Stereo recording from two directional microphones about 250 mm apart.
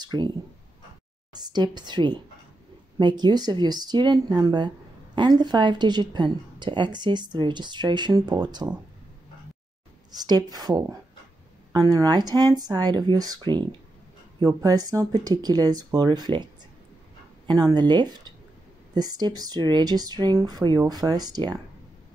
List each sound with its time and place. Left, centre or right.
0.0 s a woman's voice: centre
1.3 s a woman's voice: centre
10.1 s a woman's voice: centre
17.5 s a woman's voice: centre